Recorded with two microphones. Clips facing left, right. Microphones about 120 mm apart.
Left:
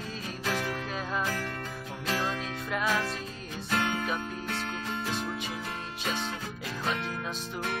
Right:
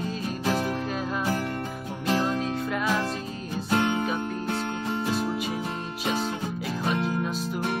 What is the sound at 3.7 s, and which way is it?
Music, 25° right (ahead or behind).